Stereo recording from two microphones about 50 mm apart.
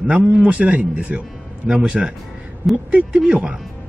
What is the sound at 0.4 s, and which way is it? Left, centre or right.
Speech, right.